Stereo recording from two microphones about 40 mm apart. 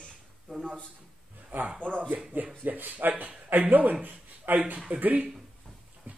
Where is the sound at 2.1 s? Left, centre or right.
Right.